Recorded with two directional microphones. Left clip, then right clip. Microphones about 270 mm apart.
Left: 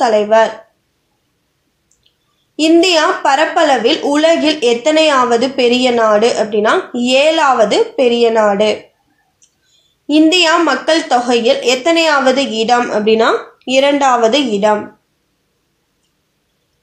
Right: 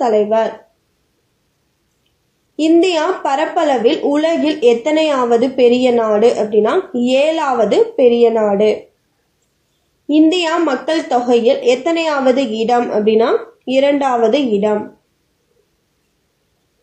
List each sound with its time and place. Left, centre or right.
0.0 s speech: left
2.5 s a woman's voice: left
10.0 s a woman's voice: left